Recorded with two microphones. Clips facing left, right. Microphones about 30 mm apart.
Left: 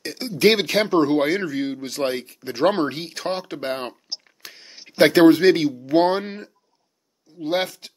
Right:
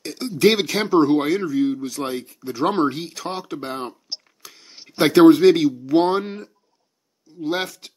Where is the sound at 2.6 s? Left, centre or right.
Left.